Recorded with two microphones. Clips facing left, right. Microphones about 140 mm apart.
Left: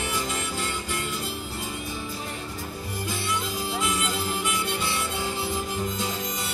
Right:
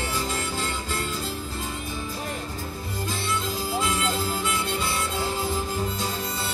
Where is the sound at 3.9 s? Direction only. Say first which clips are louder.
Right 2 dB; 20° left (ahead or behind).